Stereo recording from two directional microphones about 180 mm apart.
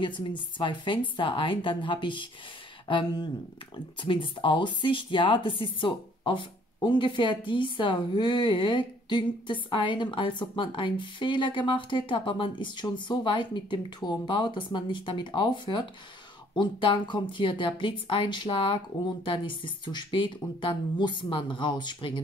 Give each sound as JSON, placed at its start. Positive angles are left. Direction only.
{"t": 0.0, "sound": "speech", "side_deg": 25}